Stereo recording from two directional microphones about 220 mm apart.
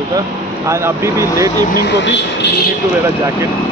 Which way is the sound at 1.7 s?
50° left (ahead or behind).